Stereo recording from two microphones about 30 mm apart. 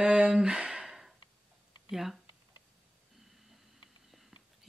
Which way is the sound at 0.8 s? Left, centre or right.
Centre.